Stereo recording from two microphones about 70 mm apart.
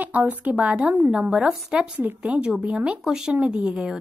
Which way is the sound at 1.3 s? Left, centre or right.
Centre.